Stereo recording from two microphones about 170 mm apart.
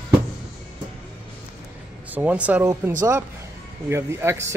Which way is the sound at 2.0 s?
10° right (ahead or behind).